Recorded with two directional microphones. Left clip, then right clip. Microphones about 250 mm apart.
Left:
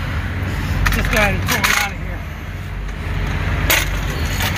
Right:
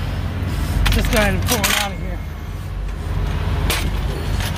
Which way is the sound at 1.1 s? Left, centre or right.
Right.